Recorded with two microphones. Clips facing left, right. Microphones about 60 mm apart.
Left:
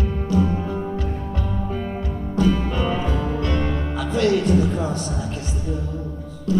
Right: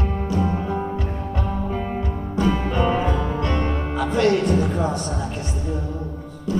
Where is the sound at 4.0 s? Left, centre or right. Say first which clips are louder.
Right 2 dB; right.